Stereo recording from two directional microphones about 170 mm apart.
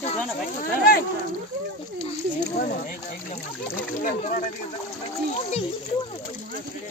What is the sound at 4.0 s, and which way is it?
Speech, 50° left (ahead or behind).